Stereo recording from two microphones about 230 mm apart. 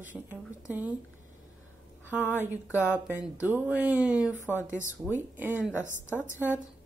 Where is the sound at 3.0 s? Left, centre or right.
Centre.